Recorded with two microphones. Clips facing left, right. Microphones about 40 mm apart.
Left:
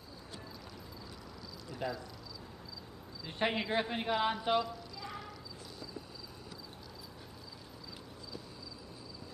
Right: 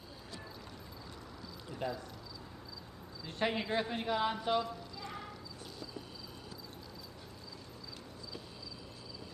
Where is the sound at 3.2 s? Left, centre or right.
Centre.